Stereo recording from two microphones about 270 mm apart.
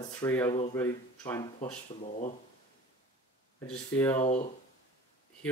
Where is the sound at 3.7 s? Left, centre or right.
Centre.